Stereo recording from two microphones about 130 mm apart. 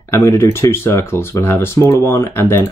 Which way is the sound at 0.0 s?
20° left (ahead or behind).